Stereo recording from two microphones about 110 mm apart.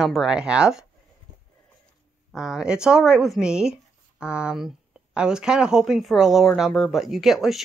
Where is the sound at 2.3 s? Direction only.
5° right (ahead or behind).